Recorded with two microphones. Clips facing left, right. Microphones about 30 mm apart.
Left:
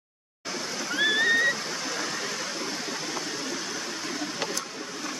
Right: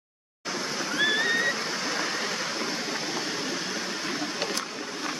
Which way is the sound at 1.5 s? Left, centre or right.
Right.